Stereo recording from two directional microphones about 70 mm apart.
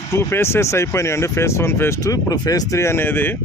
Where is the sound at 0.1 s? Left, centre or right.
Left.